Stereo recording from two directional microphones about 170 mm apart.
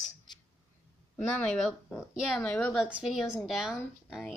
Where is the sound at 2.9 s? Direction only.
5° right (ahead or behind).